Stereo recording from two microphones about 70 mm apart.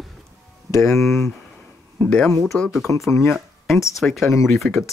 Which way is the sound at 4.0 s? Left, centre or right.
Centre.